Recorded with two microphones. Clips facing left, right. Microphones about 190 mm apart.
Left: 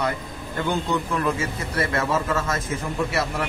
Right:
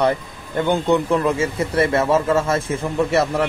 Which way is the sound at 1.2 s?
25° right (ahead or behind).